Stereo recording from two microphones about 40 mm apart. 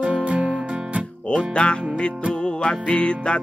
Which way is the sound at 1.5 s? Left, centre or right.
Left.